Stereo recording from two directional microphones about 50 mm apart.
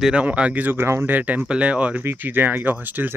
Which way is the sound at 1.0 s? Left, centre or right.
Right.